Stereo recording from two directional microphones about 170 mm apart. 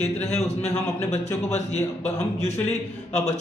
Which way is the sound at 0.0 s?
40° left (ahead or behind).